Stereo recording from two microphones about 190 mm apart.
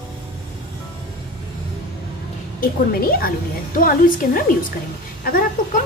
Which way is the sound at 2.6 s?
50° left (ahead or behind).